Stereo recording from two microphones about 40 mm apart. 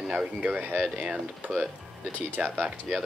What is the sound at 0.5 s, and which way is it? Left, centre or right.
Speech, right.